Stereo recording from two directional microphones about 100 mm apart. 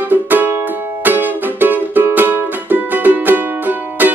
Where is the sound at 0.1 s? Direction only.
20° right (ahead or behind).